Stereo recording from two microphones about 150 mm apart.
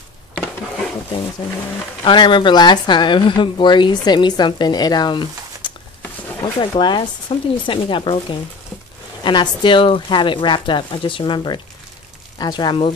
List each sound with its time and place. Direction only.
2.0 s a woman's voice: 30° left (ahead or behind)